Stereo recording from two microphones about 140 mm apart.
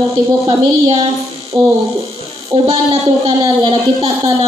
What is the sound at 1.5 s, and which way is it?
Speech, 35° right (ahead or behind).